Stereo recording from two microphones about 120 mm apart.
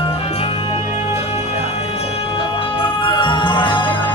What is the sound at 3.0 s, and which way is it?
Music, 40° left (ahead or behind).